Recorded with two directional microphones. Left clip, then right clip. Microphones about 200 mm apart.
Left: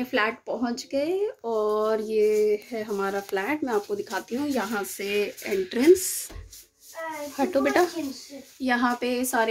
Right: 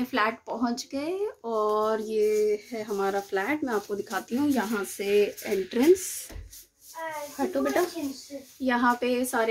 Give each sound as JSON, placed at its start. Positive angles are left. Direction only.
{"t": 0.0, "sound": "speech", "side_deg": 0}
{"t": 7.3, "sound": "speech", "side_deg": 15}
{"t": 8.6, "sound": "speech", "side_deg": 0}